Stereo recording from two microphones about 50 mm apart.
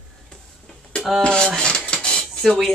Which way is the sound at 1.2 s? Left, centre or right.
Centre.